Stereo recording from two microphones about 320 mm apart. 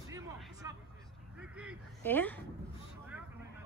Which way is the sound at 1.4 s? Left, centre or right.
Centre.